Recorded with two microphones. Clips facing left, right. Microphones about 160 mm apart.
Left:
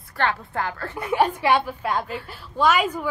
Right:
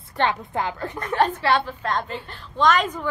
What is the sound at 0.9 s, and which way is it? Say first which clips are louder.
A woman's voice: left 1 dB; 10° left (ahead or behind).